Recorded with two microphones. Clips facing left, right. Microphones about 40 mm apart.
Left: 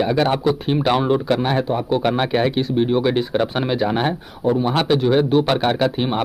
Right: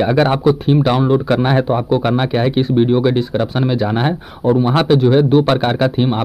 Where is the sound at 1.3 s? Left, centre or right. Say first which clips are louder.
Right 4 dB; right.